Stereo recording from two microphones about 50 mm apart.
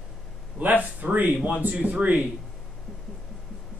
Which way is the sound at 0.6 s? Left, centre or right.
Right.